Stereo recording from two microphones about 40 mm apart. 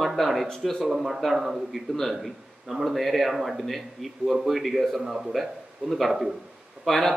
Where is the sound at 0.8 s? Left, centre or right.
Centre.